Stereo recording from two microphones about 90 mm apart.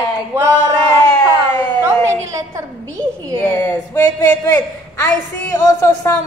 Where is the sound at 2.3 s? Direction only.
35° right (ahead or behind).